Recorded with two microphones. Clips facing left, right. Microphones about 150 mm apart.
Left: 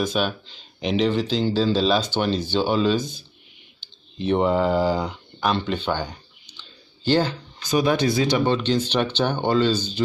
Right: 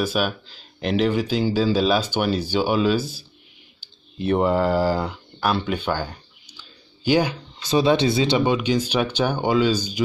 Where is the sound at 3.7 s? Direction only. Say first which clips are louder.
Right 1 dB; 5° right (ahead or behind).